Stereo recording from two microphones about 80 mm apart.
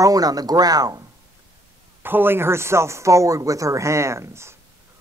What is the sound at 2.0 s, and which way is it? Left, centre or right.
Speech, right.